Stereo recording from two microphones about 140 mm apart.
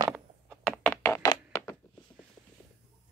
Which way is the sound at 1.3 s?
20° left (ahead or behind).